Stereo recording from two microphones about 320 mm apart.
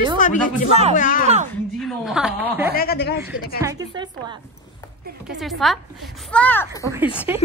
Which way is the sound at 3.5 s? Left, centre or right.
Centre.